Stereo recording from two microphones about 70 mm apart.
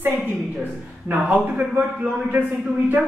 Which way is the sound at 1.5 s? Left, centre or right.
Right.